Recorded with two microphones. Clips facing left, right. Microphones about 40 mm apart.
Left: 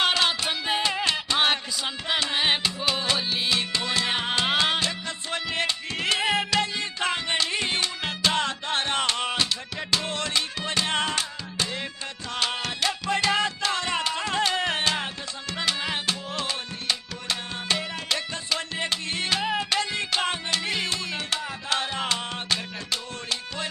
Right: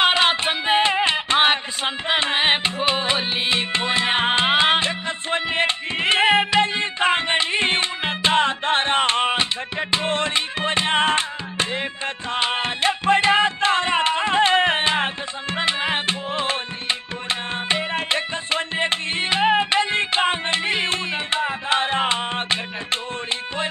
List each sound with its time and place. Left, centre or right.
0.0 s music: right